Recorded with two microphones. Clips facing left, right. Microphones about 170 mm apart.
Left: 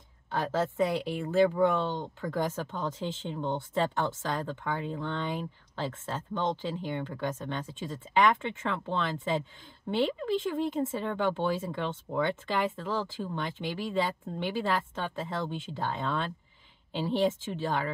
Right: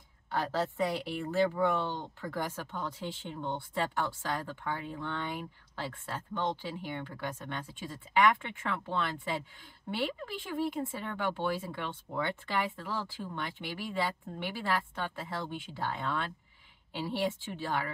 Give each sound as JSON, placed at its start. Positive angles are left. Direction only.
{"t": 0.3, "sound": "a woman's voice", "side_deg": 20}